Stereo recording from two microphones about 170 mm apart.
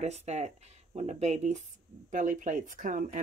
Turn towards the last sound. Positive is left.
turn(degrees=-50)  # may be behind; listen again after turning